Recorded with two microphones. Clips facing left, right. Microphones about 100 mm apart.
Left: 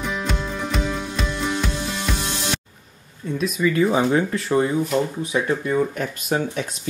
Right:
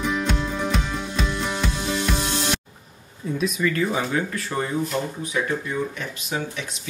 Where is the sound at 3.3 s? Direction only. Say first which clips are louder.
Left 2 dB; centre (ahead or behind).